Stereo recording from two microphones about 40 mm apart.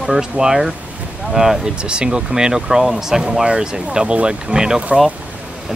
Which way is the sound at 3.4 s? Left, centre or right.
Right.